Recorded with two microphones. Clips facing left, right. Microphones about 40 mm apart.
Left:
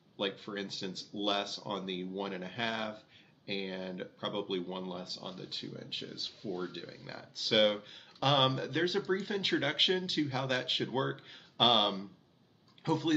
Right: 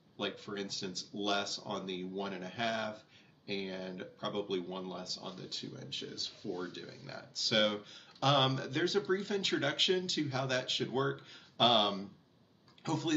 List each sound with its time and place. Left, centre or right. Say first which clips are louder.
0.2 s speech: left 2 dB; centre
5.2 s speech: left 1 dB; centre
5.5 s speech: left 2 dB; left